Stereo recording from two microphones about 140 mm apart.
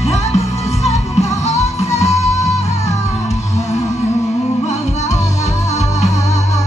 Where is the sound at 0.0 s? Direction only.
50° left (ahead or behind).